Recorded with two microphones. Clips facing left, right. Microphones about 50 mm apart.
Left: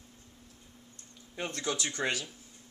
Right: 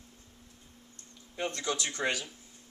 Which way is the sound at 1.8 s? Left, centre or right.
Centre.